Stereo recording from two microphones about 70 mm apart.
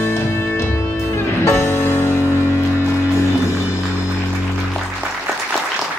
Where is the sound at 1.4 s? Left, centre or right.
Left.